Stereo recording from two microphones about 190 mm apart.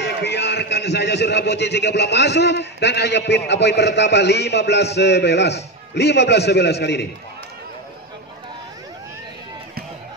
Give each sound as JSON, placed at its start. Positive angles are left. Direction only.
{"t": 0.0, "sound": "a man's voice", "side_deg": 65}